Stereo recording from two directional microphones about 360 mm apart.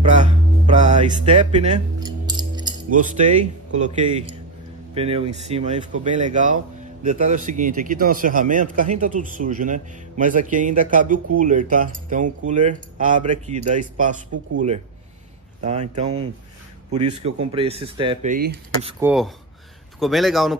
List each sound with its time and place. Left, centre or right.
0.0 s music: centre
4.9 s a man's voice: centre
15.6 s speech: centre
18.9 s speech: centre